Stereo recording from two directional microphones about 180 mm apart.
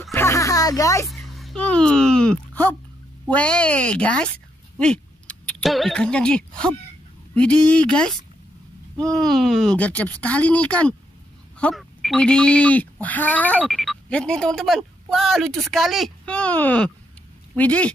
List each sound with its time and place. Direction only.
0.1 s music: 15° left (ahead or behind)
1.0 s a sound: centre (ahead or behind)
3.3 s speech: 5° left (ahead or behind)